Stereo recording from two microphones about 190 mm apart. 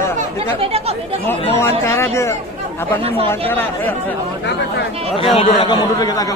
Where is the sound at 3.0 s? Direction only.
30° right (ahead or behind).